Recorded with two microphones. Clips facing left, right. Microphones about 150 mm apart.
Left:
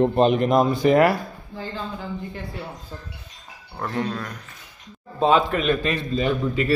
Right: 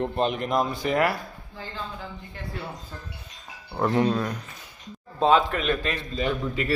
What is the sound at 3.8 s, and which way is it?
Speech, 20° right (ahead or behind).